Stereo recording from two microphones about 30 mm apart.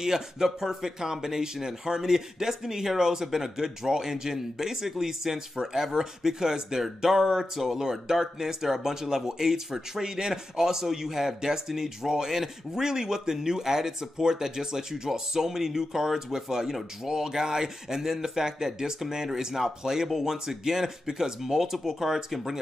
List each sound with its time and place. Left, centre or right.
0.0 s speech: centre